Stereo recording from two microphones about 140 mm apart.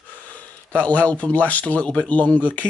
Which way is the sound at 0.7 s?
10° left (ahead or behind).